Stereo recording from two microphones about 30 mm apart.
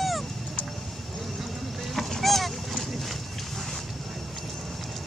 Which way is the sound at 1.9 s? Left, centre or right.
Centre.